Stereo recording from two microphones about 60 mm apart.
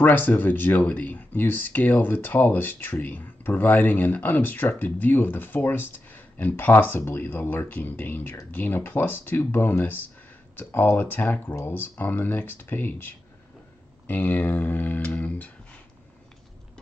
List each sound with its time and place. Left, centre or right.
0.0 s speech: left